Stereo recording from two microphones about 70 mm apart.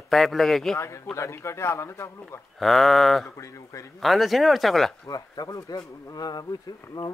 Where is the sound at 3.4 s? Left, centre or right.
Left.